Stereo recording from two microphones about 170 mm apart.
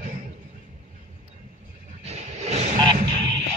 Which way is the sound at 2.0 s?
40° right (ahead or behind).